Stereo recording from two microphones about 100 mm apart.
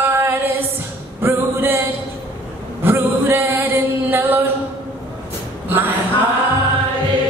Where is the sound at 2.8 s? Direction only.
20° right (ahead or behind).